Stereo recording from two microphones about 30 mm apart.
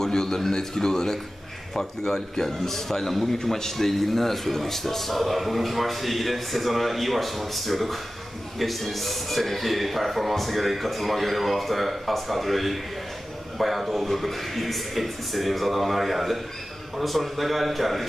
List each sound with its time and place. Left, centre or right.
0.0 s speech: centre